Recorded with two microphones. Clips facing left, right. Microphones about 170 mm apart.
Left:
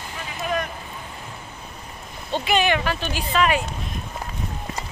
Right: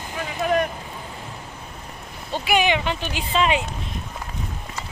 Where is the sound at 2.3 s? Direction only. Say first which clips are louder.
Even; 10° right (ahead or behind).